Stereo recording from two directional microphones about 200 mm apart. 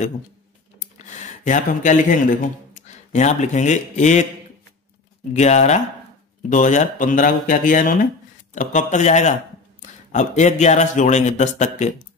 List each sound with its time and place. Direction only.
0.7 s speech: 35° left (ahead or behind)
5.3 s speech: 35° left (ahead or behind)